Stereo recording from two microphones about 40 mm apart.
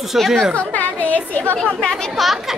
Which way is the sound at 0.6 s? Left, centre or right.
Left.